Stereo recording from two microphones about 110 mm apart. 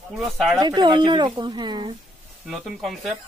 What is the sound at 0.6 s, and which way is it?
A woman's voice, 35° right (ahead or behind).